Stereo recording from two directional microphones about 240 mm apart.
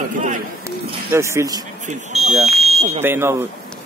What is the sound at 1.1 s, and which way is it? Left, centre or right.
Speech, centre.